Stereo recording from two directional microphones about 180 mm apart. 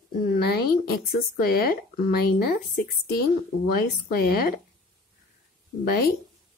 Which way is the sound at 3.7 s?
60° left (ahead or behind).